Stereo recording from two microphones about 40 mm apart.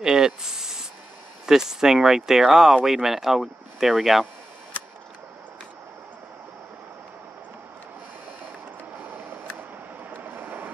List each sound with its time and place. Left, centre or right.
0.0 s a sound: centre
1.4 s speech: centre
10.1 s vehicle: right